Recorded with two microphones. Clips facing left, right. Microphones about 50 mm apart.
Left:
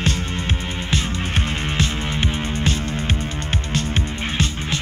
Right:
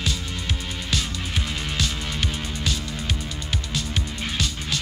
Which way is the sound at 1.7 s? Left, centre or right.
Left.